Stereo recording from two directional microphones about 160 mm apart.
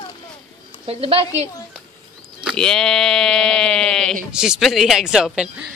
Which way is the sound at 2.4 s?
5° left (ahead or behind).